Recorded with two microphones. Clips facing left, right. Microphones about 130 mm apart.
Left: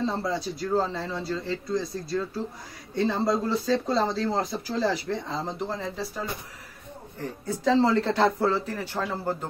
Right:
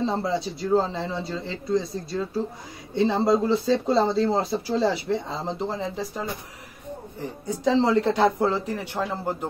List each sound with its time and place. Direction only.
0.0 s speech: 25° right (ahead or behind)
7.4 s speech: 20° right (ahead or behind)